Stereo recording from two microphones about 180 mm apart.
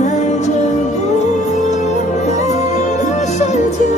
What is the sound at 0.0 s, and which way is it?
Music, 40° left (ahead or behind).